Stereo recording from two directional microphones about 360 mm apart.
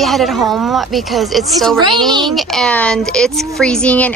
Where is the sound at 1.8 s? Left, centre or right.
Centre.